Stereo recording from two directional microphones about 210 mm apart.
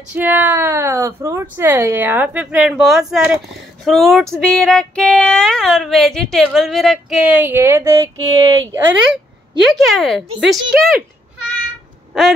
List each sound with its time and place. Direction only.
0.1 s speech: 10° right (ahead or behind)
3.8 s female singing: centre (ahead or behind); by 8.9 s 15° right (ahead or behind)
9.7 s female singing: centre (ahead or behind)
12.1 s female singing: centre (ahead or behind)